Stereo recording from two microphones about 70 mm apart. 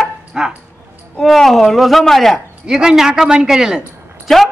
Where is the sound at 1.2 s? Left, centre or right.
Centre.